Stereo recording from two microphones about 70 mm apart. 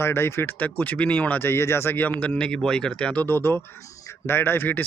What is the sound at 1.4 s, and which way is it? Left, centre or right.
Speech, left.